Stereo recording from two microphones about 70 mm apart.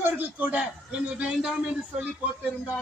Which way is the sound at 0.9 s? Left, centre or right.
Centre.